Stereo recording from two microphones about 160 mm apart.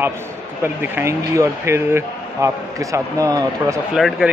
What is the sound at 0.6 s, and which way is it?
Speech, 15° right (ahead or behind).